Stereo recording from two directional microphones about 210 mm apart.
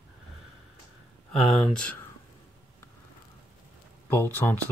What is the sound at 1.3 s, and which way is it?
Speech, 5° left (ahead or behind).